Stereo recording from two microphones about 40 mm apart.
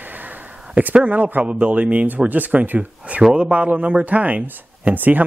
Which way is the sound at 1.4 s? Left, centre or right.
Right.